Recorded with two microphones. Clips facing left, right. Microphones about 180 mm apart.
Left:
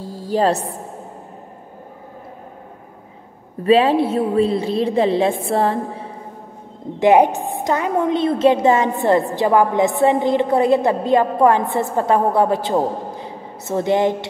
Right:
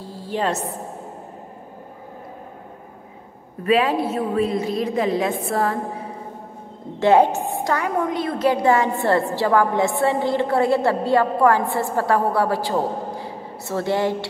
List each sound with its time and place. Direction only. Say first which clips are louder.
0.3 s a woman's voice: left 6 dB; 35° left (ahead or behind)
3.6 s a woman's voice: left 5 dB; 30° left (ahead or behind)
7.0 s a woman's voice: left 2 dB; 15° left (ahead or behind)